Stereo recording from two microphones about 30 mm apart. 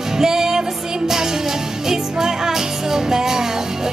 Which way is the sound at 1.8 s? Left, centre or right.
Centre.